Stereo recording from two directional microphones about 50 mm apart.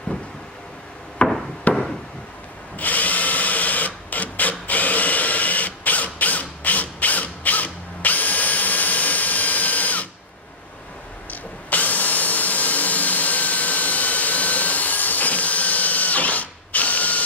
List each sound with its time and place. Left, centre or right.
1.2 s chop: left
1.7 s a sound: left
2.8 s drill: left
11.2 s tools: left